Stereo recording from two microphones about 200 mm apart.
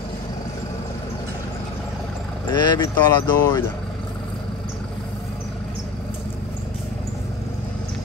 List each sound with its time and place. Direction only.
2.5 s speech: 20° left (ahead or behind)